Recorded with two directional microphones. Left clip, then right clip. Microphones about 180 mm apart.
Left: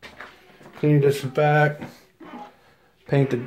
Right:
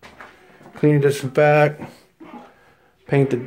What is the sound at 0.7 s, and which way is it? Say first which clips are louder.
Speech: right 3 dB; 30° right (ahead or behind).